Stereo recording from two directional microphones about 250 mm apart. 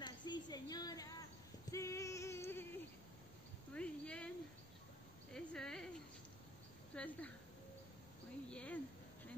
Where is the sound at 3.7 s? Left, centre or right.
Centre.